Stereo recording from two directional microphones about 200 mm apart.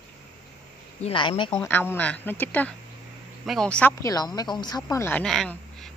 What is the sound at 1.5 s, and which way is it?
A woman's voice, 10° left (ahead or behind).